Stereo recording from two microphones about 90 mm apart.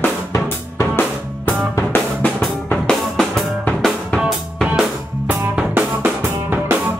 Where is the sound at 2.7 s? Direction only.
5° left (ahead or behind).